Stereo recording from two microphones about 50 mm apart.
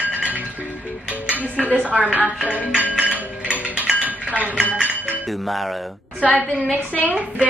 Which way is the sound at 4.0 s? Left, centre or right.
Right.